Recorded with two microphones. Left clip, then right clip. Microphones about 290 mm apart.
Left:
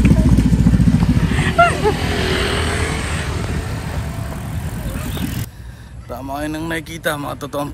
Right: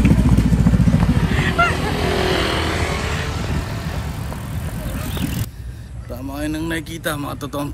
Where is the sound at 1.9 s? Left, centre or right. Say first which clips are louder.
Right 1 dB; right.